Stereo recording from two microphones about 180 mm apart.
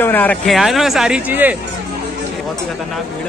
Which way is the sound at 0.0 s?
10° left (ahead or behind).